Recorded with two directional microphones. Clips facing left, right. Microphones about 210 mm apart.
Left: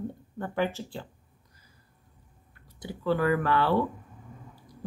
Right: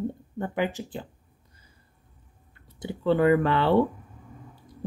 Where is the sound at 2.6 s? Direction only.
25° right (ahead or behind).